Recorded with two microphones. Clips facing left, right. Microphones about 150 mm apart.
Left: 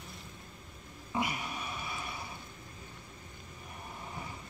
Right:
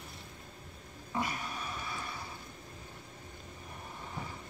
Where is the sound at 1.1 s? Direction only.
10° left (ahead or behind).